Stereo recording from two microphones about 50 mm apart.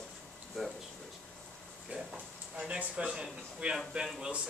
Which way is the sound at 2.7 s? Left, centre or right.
Centre.